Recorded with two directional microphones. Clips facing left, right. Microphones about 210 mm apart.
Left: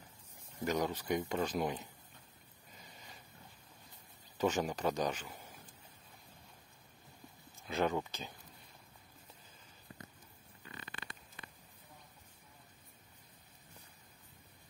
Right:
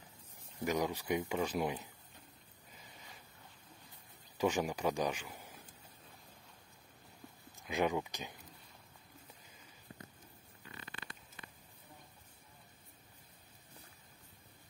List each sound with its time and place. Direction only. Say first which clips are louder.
0.7 s speech: even; 10° right (ahead or behind)
4.4 s speech: even; 10° right (ahead or behind)
7.5 s speech: even; 15° right (ahead or behind)